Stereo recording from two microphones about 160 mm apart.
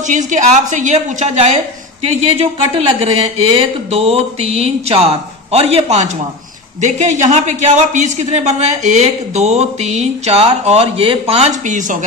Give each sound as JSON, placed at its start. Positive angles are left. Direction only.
{"t": 0.0, "sound": "speech", "side_deg": -50}
{"t": 2.9, "sound": "a sound", "side_deg": -35}
{"t": 6.8, "sound": "speech", "side_deg": -50}